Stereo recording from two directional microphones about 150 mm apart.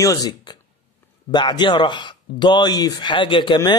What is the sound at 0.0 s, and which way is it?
A man's voice, 25° left (ahead or behind).